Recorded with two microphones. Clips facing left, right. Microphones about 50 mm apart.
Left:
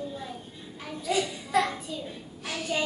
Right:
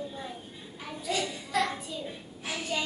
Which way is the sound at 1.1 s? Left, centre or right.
Centre.